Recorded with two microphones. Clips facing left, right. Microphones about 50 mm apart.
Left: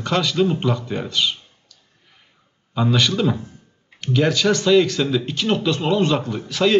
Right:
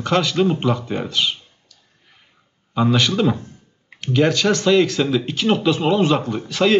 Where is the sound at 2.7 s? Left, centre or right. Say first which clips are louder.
Right 2 dB; centre.